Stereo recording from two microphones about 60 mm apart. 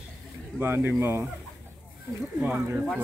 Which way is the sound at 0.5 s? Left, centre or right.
Right.